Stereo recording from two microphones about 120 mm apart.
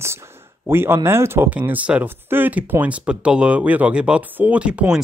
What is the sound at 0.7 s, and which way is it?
Speech, 20° right (ahead or behind).